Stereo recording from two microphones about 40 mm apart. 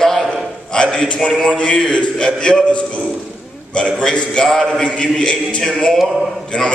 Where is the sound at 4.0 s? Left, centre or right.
Left.